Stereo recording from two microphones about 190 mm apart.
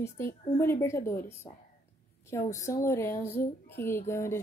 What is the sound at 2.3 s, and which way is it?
A woman's voice, 15° left (ahead or behind).